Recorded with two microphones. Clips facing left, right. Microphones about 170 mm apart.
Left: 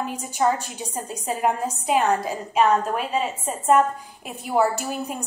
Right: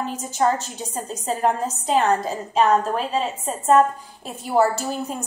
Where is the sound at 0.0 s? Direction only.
15° left (ahead or behind).